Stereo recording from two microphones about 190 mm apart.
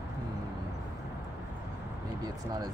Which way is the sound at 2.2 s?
20° right (ahead or behind).